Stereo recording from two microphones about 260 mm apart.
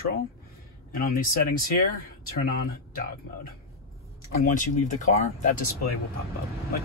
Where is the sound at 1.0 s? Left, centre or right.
Left.